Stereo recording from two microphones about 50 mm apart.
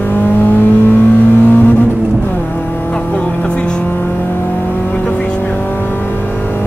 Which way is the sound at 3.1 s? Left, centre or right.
Left.